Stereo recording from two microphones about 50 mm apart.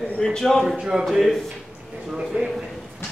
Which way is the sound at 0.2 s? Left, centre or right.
Centre.